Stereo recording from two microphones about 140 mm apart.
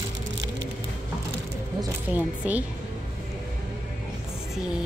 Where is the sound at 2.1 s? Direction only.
10° right (ahead or behind).